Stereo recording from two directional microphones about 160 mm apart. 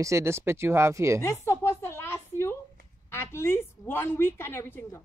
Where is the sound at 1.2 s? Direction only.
20° left (ahead or behind).